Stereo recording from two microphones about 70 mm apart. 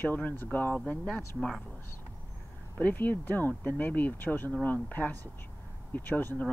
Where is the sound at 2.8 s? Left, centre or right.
Left.